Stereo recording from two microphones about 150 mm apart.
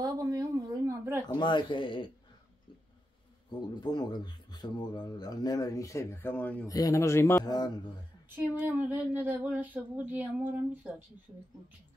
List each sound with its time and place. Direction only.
0.0 s a sound: 25° right (ahead or behind)
1.3 s speech: 30° left (ahead or behind)
3.5 s speech: 30° left (ahead or behind); by 6.7 s 10° left (ahead or behind)
6.7 s speech: 20° left (ahead or behind)
8.5 s speech: 10° right (ahead or behind)